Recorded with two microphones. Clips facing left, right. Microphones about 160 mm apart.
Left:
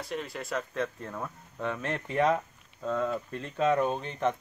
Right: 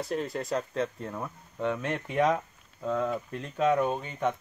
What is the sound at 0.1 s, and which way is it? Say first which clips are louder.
Speech: right 3 dB; 40° right (ahead or behind).